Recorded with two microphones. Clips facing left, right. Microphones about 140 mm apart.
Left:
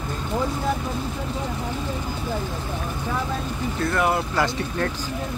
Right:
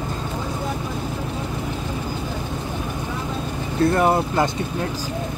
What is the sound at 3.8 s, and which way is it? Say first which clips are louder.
Speech: right 5 dB; 30° right (ahead or behind).